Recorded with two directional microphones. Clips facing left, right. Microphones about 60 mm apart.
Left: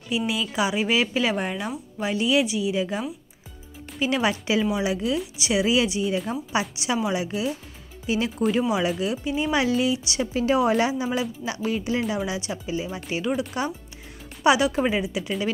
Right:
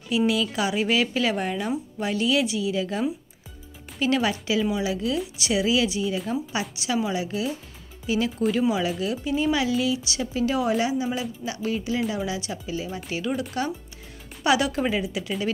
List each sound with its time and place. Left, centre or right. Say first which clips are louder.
0.3 s speech: right 1 dB; centre
4.0 s speech: even; centre
6.1 s speech: even; centre
7.0 s speech: even; centre
8.5 s speech: left 1 dB; centre
9.5 s speech: left 3 dB; left
13.3 s speech: left 2 dB; centre
14.4 s speech: left 2 dB; centre